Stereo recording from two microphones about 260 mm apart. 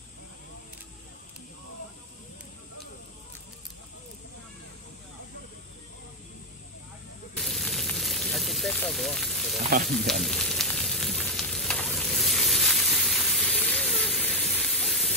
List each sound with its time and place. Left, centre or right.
7.3 s a sound: centre
9.6 s frying: right
9.8 s frying: centre